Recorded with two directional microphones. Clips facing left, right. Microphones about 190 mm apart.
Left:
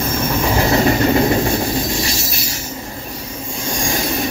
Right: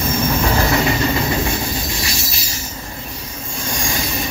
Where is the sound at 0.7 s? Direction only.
35° left (ahead or behind).